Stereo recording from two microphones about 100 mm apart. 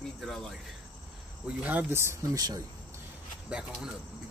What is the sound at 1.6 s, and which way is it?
Speech, 15° right (ahead or behind).